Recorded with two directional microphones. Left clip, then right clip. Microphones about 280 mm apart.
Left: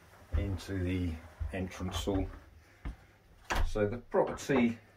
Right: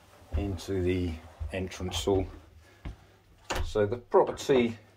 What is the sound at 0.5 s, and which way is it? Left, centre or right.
Speech, centre.